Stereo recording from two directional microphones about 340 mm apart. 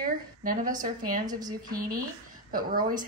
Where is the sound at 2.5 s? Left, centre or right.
Right.